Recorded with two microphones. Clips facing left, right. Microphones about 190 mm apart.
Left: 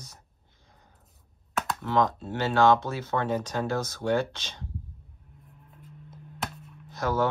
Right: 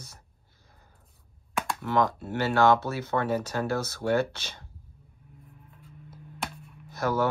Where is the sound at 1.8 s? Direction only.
10° right (ahead or behind).